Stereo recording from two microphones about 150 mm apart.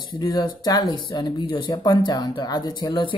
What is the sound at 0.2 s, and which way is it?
Speech, 25° left (ahead or behind).